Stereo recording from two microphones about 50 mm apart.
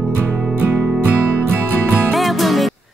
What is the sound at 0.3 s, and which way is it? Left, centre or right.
Music, centre.